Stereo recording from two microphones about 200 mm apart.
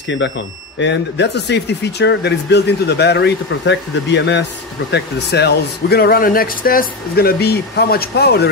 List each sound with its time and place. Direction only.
0.7 s speech: 60° left (ahead or behind)